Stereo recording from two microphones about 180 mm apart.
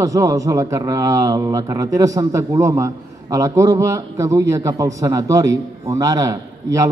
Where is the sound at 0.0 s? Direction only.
20° right (ahead or behind).